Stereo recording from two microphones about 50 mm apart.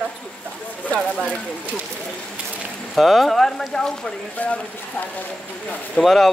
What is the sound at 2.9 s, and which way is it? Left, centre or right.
Speech, centre.